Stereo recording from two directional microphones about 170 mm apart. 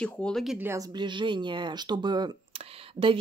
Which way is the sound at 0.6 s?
15° right (ahead or behind).